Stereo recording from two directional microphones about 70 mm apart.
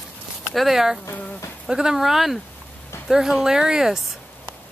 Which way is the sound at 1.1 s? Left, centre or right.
Centre.